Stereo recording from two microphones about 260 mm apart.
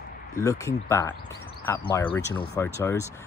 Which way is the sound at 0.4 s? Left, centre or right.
Centre.